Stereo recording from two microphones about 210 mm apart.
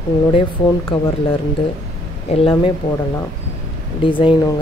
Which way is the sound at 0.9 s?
25° left (ahead or behind).